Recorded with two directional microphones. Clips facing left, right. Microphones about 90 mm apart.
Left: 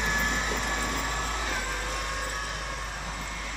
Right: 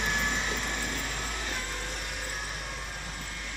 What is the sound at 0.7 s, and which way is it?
Vehicle, 55° left (ahead or behind).